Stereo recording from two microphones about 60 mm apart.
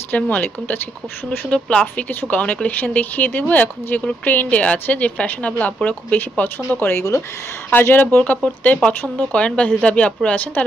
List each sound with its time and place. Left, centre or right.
0.1 s speech: left
8.8 s speech: centre